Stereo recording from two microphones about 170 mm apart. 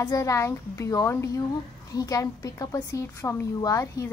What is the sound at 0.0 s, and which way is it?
A woman's voice, 20° left (ahead or behind).